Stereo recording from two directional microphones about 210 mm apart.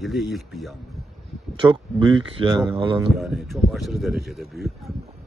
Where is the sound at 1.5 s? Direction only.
20° right (ahead or behind).